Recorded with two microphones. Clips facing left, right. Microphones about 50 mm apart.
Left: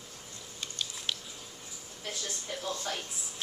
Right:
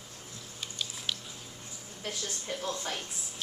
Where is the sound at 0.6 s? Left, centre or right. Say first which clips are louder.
Even; centre.